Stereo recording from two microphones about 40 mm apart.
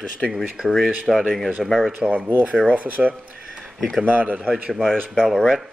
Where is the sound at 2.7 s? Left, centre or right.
Right.